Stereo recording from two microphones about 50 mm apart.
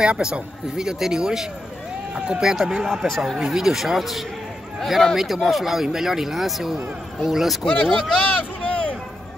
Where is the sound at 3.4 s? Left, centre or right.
Centre.